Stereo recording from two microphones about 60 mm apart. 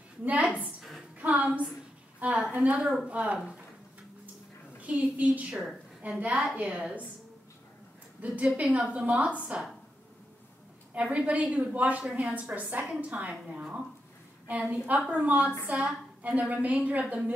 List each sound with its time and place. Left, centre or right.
0.2 s a woman's voice: right
0.5 s a sound: left
1.2 s a sound: right
2.2 s a woman's voice: right
4.7 s a woman's voice: right
5.5 s a woman's voice: centre
6.0 s a woman's voice: right
8.2 s a woman's voice: right
11.0 s a woman's voice: right
12.0 s a woman's voice: centre
12.3 s a woman's voice: right